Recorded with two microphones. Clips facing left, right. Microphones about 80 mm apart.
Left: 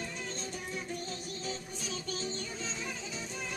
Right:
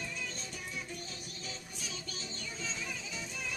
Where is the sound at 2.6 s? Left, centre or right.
Left.